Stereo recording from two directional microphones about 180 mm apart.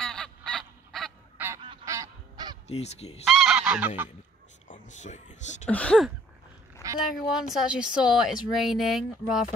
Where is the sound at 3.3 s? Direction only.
Centre (ahead or behind).